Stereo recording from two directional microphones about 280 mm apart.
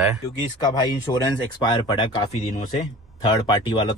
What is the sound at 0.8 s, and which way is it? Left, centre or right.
Speech, centre.